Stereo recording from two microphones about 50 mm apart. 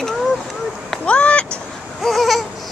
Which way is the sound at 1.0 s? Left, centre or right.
Left.